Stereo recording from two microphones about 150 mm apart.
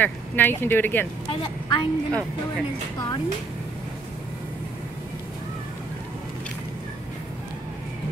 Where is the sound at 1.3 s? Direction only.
30° left (ahead or behind).